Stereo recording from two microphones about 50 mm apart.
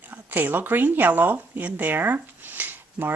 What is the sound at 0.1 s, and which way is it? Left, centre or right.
Speech, right.